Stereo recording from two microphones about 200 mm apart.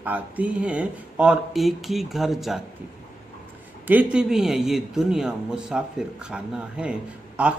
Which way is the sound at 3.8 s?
5° right (ahead or behind).